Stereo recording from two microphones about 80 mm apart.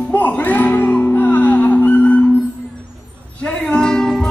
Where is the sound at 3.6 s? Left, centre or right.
Centre.